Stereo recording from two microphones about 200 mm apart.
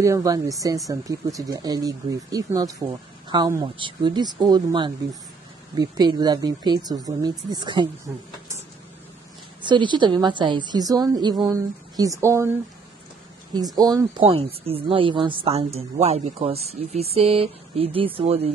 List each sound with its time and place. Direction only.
0.0 s a woman's voice: 15° right (ahead or behind)
9.6 s a woman's voice: 25° right (ahead or behind)
13.7 s a woman's voice: 20° right (ahead or behind)